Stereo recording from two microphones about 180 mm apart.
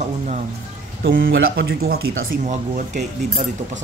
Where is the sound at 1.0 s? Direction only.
55° right (ahead or behind).